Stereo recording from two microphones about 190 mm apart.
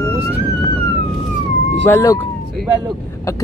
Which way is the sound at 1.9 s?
15° left (ahead or behind).